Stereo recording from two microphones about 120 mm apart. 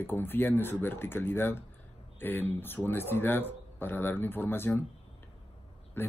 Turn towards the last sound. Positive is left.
turn(degrees=20)  # may be behind; listen again after turning